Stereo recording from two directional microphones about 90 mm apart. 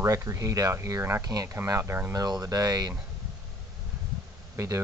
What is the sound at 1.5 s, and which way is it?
Speech, 30° right (ahead or behind).